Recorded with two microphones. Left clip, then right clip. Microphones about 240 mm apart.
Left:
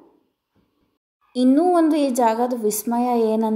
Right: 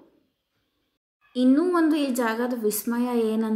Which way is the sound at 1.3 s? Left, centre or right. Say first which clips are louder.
Left 5 dB; centre.